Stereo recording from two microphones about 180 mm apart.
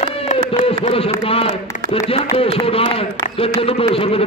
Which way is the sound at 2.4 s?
30° left (ahead or behind).